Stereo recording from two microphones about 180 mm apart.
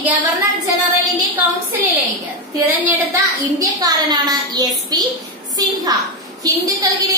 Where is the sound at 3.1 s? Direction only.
20° right (ahead or behind).